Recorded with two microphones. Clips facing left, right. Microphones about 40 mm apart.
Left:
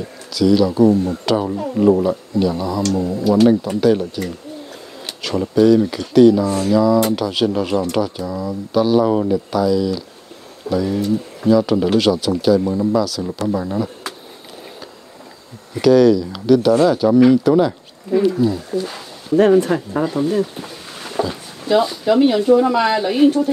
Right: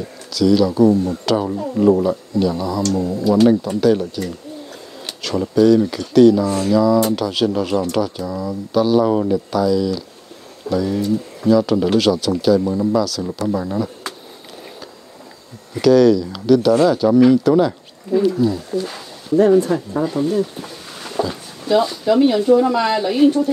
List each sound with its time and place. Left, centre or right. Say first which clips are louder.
0.3 s speech: even; centre
2.9 s speech: even; left
3.8 s speech: even; centre
5.2 s speech: even; centre
15.7 s speech: even; centre
18.1 s speech: left 1 dB; left
18.7 s speech: even; left
19.6 s speech: left 1 dB; left
20.6 s speech: even; centre